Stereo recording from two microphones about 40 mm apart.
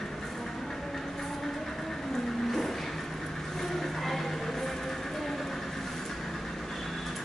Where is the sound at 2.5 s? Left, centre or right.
Centre.